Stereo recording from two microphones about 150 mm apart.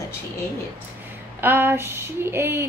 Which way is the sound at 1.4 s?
15° right (ahead or behind).